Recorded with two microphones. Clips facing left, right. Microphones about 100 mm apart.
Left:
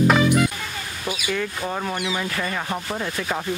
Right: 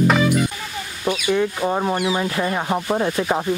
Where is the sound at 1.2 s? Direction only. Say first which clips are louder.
Right 7 dB; 25° right (ahead or behind).